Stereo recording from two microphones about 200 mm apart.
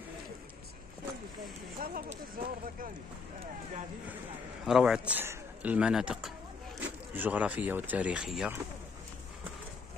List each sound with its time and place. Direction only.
1.8 s speech: 45° right (ahead or behind)
4.6 s a man's voice: 5° right (ahead or behind)